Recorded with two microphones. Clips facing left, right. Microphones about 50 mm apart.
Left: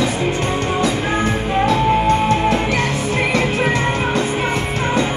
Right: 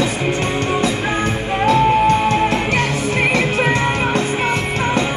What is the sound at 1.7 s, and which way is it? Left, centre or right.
Music, right.